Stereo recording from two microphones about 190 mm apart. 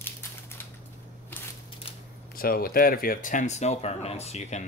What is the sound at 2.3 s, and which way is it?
Speech, 50° left (ahead or behind).